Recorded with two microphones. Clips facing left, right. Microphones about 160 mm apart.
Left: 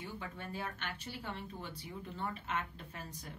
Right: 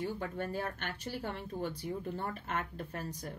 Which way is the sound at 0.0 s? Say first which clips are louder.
Right 8 dB; 45° right (ahead or behind).